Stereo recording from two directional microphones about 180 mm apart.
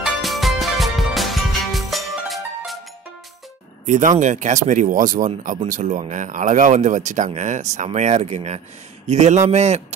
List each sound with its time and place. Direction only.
0.1 s music: centre (ahead or behind)
3.8 s speech: 45° right (ahead or behind)